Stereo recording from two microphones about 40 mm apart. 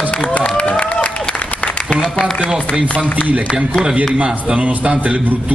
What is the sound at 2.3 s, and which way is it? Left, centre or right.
Speech, centre.